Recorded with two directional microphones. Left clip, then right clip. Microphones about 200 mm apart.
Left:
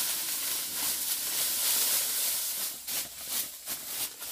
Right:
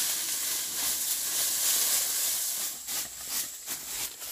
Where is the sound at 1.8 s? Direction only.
15° left (ahead or behind).